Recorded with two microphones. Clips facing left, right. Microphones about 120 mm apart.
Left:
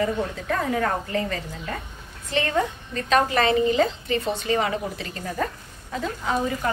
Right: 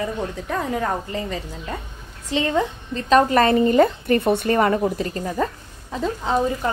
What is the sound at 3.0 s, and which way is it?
A woman's voice, 35° right (ahead or behind).